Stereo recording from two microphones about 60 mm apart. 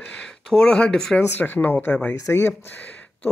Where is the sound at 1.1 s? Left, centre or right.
Left.